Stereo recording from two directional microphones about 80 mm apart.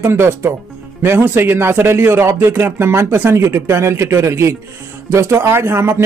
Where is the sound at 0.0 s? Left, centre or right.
Right.